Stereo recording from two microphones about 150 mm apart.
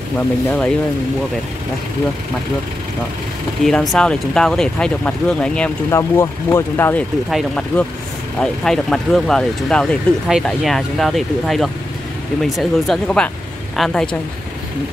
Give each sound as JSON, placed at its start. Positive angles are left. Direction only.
{"t": 0.5, "sound": "speech", "side_deg": 10}
{"t": 3.6, "sound": "speech", "side_deg": 0}
{"t": 5.9, "sound": "speech", "side_deg": 20}
{"t": 7.2, "sound": "speech", "side_deg": 0}